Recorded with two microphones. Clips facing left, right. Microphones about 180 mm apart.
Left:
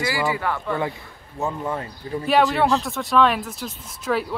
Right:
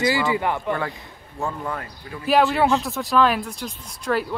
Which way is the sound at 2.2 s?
Centre (ahead or behind).